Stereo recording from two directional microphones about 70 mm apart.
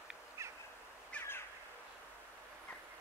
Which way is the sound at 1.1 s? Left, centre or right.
Centre.